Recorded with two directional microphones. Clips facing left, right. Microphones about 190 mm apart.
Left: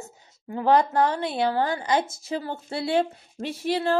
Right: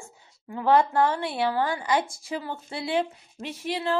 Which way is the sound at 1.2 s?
20° left (ahead or behind).